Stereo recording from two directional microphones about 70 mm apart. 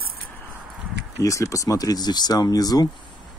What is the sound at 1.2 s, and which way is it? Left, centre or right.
Speech, left.